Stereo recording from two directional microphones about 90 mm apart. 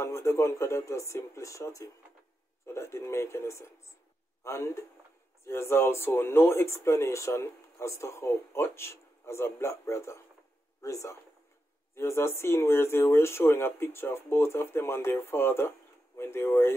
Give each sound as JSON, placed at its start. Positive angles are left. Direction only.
{"t": 0.0, "sound": "speech", "side_deg": 30}